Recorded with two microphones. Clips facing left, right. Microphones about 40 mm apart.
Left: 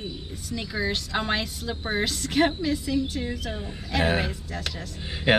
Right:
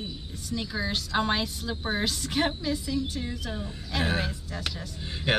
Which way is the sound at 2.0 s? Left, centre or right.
Centre.